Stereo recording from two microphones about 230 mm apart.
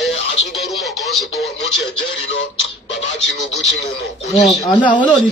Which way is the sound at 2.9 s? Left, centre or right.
Left.